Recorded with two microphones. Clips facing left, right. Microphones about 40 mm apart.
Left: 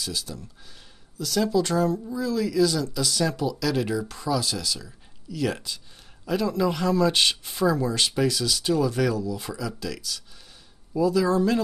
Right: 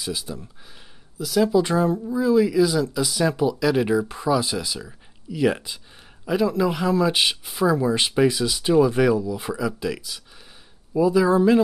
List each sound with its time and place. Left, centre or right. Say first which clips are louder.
0.0 s speech: right 3 dB; right